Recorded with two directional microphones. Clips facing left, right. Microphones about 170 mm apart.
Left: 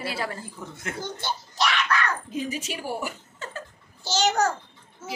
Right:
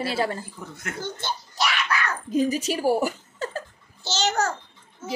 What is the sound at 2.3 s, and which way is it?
Speech, 40° right (ahead or behind).